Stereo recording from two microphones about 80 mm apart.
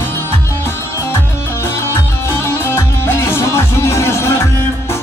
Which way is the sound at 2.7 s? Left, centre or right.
Left.